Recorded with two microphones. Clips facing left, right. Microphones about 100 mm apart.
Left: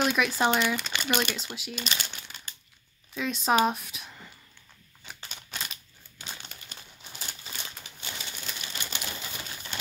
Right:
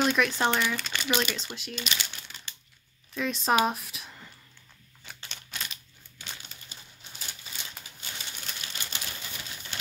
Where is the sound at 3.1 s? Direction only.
Centre (ahead or behind).